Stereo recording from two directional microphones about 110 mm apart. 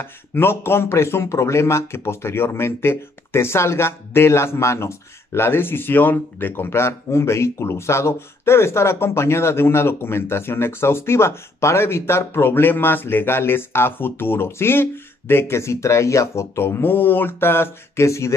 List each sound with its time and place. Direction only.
0.0 s speech: 20° left (ahead or behind)